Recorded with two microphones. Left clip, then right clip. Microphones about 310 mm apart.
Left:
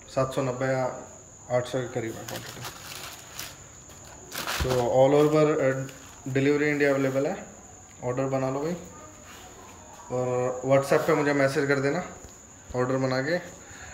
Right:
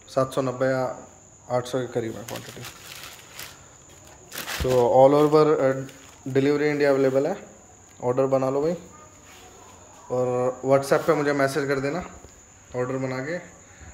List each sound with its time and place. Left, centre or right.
0.1 s speech: right
4.9 s speech: centre
10.1 s speech: centre